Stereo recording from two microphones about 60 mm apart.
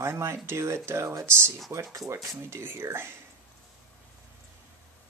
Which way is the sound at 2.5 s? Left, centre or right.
Right.